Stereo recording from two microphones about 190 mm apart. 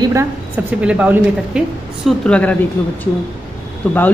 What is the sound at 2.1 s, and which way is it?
Speech, 5° left (ahead or behind).